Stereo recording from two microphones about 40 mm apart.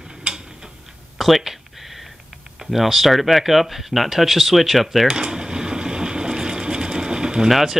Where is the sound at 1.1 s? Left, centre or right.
Centre.